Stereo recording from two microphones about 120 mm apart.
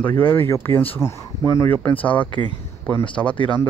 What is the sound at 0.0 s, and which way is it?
Speech, 15° left (ahead or behind).